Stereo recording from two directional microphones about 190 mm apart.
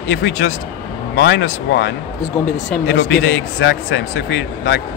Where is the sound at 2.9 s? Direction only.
75° left (ahead or behind).